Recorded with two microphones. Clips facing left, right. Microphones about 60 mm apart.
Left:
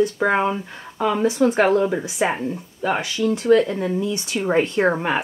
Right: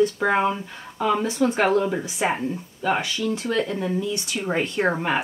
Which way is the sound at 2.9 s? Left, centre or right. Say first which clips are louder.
Left 3 dB; centre.